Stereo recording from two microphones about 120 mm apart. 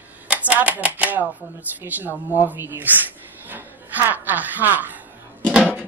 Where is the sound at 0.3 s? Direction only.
10° right (ahead or behind).